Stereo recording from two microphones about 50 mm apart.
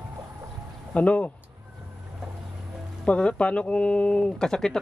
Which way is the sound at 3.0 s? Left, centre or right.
Left.